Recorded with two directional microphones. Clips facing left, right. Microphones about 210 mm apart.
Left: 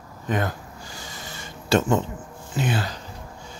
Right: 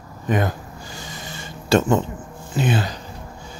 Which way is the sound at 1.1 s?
20° right (ahead or behind).